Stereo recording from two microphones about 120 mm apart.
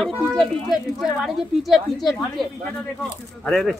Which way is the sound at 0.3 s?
5° left (ahead or behind).